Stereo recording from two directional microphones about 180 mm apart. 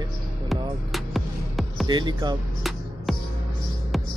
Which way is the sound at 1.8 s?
25° right (ahead or behind).